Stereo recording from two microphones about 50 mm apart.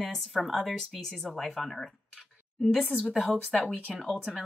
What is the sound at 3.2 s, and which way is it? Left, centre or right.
Speech, right.